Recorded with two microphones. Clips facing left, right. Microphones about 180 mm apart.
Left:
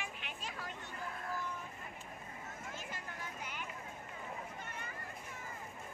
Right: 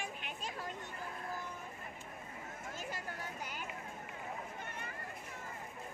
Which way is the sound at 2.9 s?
40° right (ahead or behind).